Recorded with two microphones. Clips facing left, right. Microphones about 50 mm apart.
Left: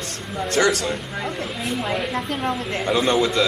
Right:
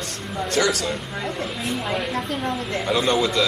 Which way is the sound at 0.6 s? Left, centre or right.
Left.